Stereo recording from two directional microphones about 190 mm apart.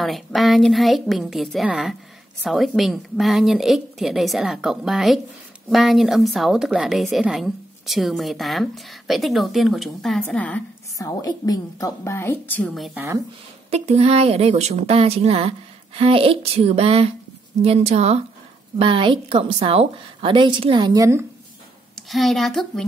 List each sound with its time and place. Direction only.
0.0 s a woman's voice: centre (ahead or behind)
11.0 s a woman's voice: 20° left (ahead or behind); by 13.0 s centre (ahead or behind)
13.7 s a woman's voice: 35° right (ahead or behind); by 21.3 s 15° right (ahead or behind)
22.1 s a woman's voice: centre (ahead or behind)